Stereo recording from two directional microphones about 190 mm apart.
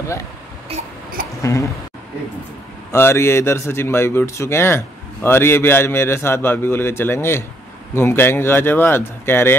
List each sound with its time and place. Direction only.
1.4 s speech: 15° left (ahead or behind)
2.9 s speech: 15° left (ahead or behind)